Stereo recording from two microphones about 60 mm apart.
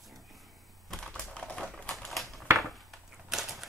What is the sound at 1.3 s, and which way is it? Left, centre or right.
Typewriter, centre.